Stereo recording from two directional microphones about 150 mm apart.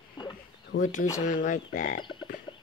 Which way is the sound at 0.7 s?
65° left (ahead or behind).